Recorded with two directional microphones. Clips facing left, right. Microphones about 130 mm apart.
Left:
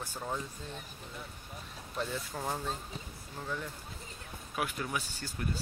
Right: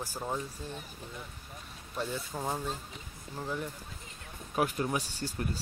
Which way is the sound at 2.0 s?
5° right (ahead or behind).